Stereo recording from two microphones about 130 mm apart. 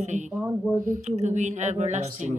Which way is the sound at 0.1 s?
65° right (ahead or behind).